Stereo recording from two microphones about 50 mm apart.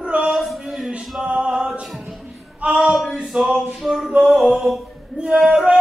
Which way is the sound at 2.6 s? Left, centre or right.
Centre.